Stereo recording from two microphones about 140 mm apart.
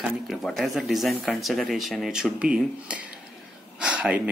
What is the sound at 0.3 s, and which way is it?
Speech, centre (ahead or behind).